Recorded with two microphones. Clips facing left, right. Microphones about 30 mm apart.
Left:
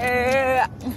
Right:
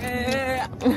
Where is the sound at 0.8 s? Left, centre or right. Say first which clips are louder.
Right 9 dB; right.